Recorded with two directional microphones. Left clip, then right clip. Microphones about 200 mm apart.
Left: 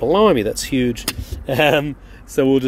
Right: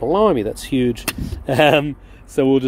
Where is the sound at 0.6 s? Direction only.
15° right (ahead or behind).